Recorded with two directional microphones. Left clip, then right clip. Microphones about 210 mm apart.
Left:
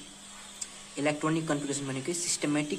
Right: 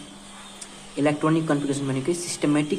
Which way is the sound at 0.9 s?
5° left (ahead or behind).